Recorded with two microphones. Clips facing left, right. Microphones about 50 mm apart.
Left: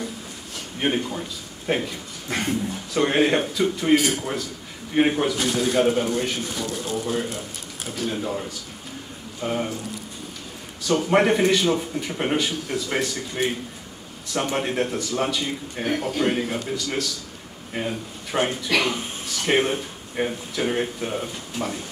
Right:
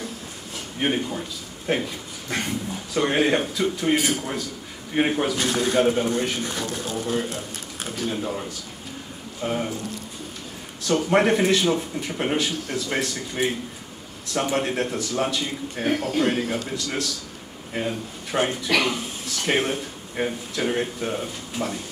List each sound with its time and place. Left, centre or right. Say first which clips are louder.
0.7 s speech: even; centre
10.9 s speech: even; centre